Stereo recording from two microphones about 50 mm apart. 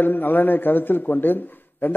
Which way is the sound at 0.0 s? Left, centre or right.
Left.